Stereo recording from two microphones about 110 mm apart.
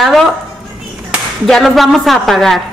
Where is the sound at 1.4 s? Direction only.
Centre (ahead or behind).